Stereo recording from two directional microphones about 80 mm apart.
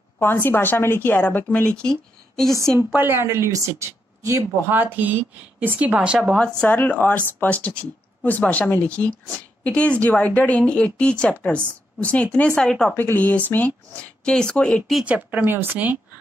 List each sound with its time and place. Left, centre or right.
0.2 s speech: left; by 2.5 s centre
3.0 s a woman's voice: right
4.7 s a woman's voice: right
6.3 s speech: centre
12.9 s speech: left
14.2 s speech: centre
15.0 s a woman's voice: centre